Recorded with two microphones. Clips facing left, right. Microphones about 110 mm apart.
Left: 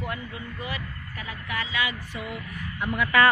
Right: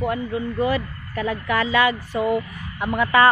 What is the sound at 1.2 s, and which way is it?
Speech, 55° right (ahead or behind).